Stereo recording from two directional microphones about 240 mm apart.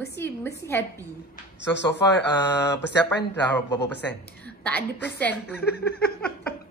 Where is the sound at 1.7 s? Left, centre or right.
Left.